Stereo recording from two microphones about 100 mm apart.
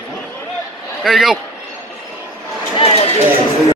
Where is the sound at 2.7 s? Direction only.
90° left.